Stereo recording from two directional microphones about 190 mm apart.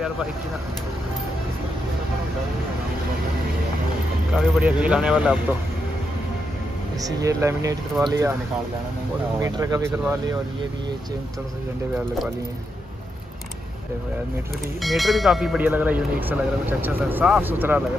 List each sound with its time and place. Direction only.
4.4 s speech: 5° right (ahead or behind)
7.0 s speech: 20° right (ahead or behind)
9.4 s speech: 15° right (ahead or behind)
14.8 s speech: centre (ahead or behind)